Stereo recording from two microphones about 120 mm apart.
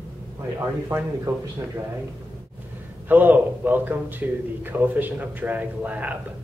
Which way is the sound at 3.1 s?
15° right (ahead or behind).